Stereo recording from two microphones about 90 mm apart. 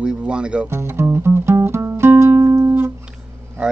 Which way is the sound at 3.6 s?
10° right (ahead or behind).